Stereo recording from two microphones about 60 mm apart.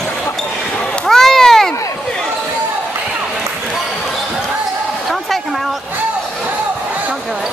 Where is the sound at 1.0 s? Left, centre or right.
Centre.